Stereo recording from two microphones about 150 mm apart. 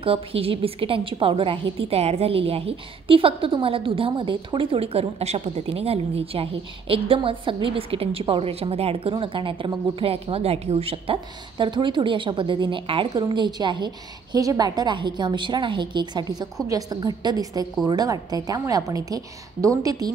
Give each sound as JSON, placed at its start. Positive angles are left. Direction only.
{"t": 0.0, "sound": "a woman's voice", "side_deg": -40}